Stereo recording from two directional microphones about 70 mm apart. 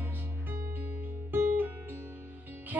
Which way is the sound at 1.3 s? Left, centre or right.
Right.